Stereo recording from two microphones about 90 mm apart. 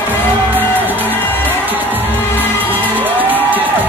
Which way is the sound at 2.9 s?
20° right (ahead or behind).